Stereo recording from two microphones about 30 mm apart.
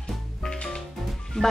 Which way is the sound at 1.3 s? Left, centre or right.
Left.